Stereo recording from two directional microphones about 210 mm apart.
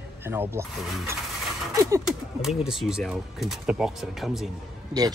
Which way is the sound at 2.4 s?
Centre (ahead or behind).